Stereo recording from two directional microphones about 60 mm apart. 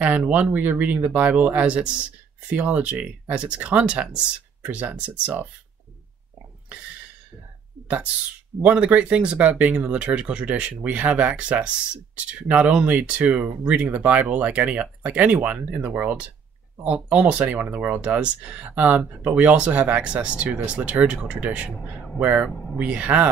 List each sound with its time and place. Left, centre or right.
0.3 s speech: right
6.7 s a sound: right
8.6 s speech: right